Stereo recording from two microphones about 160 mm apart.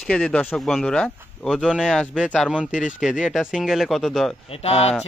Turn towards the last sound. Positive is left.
turn(degrees=40)  # may be behind; listen again after turning